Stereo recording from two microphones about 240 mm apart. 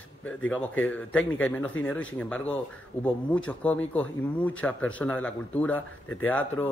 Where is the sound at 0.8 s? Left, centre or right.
Centre.